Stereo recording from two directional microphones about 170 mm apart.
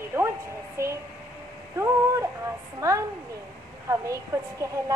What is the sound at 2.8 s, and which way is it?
A woman's voice, 20° right (ahead or behind).